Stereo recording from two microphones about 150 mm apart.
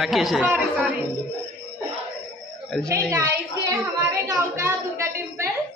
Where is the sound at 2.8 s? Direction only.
20° right (ahead or behind).